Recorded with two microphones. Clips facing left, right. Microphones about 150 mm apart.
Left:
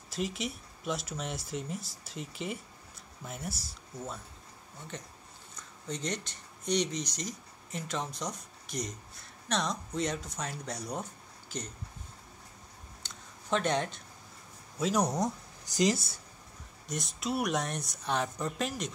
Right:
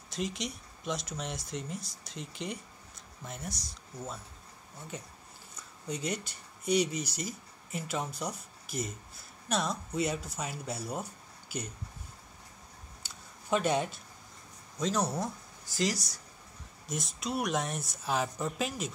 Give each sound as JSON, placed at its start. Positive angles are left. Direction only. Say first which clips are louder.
{"t": 0.1, "sound": "speech", "louder": "left 1 dB", "side_deg": 0}
{"t": 13.0, "sound": "a sound", "louder": "left 1 dB", "side_deg": -10}
{"t": 14.8, "sound": "speech", "louder": "left 2 dB", "side_deg": 10}
{"t": 16.8, "sound": "speech", "louder": "left 1 dB", "side_deg": 0}